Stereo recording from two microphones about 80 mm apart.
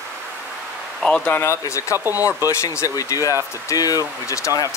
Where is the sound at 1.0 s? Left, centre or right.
Centre.